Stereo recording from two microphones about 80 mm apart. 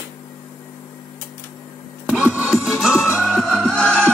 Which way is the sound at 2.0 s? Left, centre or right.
Centre.